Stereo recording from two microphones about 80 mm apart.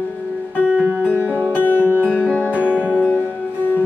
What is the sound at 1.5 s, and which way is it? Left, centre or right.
Music, left.